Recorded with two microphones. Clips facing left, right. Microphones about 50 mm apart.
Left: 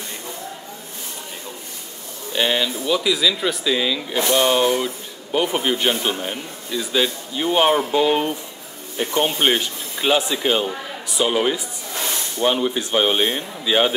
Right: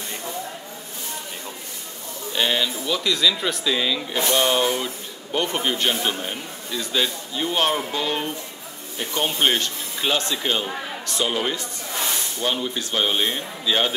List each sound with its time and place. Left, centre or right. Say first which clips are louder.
2.3 s speech: left 2 dB; centre